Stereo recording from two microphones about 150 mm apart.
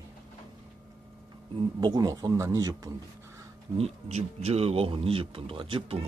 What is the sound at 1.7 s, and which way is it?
A man's voice, 25° right (ahead or behind).